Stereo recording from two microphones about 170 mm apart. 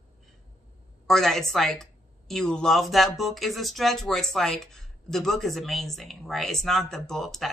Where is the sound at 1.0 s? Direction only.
Centre (ahead or behind).